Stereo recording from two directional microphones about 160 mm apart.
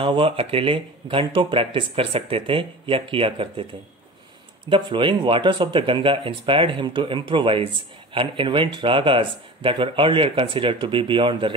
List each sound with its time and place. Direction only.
0.0 s speech: 35° right (ahead or behind)
4.6 s speech: 30° right (ahead or behind)